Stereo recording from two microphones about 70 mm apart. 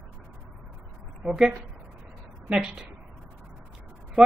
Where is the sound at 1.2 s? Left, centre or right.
Centre.